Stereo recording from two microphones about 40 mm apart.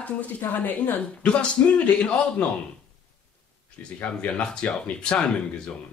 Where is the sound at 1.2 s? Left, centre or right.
Left.